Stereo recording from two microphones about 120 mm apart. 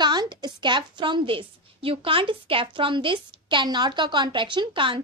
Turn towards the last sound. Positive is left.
turn(degrees=-45)  # may be behind; listen again after turning